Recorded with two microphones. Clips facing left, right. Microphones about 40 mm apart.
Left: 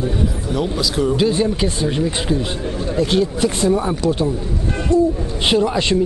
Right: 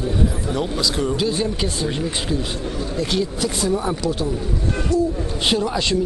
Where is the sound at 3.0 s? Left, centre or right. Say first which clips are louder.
Left 6 dB; left.